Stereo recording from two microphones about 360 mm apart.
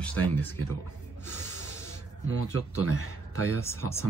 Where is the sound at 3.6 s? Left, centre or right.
Centre.